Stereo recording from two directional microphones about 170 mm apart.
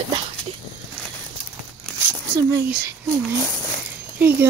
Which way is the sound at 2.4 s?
15° right (ahead or behind).